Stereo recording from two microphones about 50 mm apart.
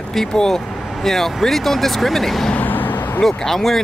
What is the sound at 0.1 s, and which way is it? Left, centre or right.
Speech, centre.